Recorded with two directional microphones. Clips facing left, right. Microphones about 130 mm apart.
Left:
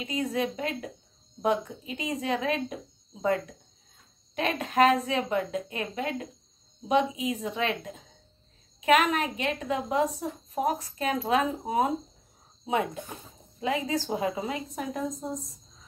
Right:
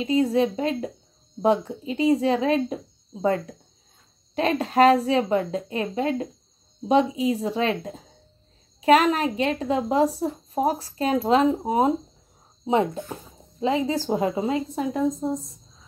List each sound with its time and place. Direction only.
0.0 s a woman's voice: 30° right (ahead or behind)
13.1 s speech: 30° right (ahead or behind)